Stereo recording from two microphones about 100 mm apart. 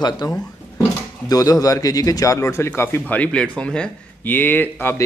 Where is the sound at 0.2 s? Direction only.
35° left (ahead or behind); by 4.9 s 20° left (ahead or behind).